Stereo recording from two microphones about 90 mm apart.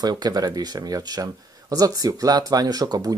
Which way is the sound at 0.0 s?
50° right (ahead or behind).